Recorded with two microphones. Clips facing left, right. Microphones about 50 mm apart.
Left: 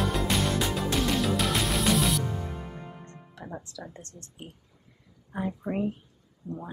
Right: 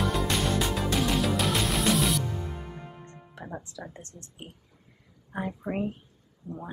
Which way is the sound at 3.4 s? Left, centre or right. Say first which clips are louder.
Even; right.